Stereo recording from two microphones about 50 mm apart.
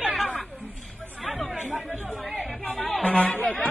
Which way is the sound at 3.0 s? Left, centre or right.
Left.